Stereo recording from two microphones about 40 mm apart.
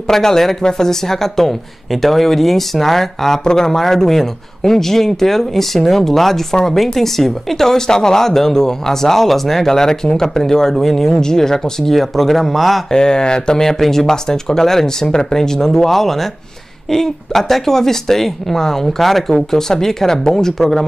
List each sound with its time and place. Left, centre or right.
0.1 s speech: centre
12.9 s speech: centre
13.6 s speech: centre